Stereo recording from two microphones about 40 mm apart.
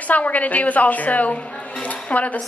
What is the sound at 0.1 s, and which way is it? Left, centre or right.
A woman's voice, left.